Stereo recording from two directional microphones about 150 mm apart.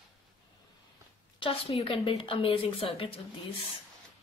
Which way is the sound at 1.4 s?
40° left (ahead or behind).